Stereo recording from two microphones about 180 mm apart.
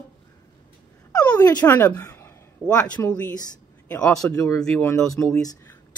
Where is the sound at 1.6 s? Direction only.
10° left (ahead or behind).